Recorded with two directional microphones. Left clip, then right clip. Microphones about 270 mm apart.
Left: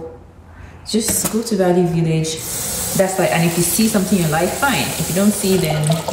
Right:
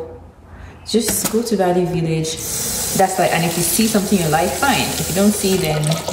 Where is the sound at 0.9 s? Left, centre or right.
Centre.